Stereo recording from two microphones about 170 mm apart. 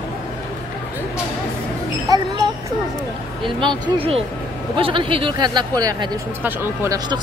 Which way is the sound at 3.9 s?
35° right (ahead or behind).